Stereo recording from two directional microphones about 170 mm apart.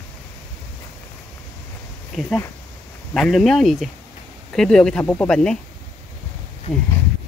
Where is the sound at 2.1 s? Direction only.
Centre (ahead or behind).